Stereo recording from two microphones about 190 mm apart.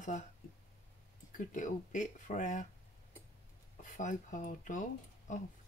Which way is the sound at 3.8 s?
40° left (ahead or behind).